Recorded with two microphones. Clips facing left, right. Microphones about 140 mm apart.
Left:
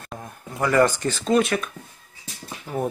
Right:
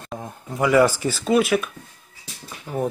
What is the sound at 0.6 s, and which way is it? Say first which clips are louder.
Speech: right 2 dB; 10° right (ahead or behind).